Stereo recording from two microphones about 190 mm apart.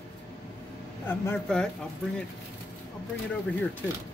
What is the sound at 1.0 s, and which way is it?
Speech, 10° left (ahead or behind).